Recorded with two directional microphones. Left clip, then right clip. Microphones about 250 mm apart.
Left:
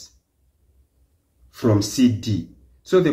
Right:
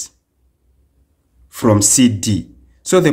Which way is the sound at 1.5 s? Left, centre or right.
Right.